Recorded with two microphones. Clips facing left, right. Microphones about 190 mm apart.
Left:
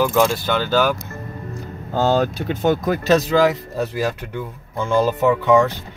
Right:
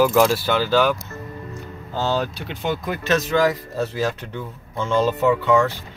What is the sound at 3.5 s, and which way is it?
Speech, 15° left (ahead or behind).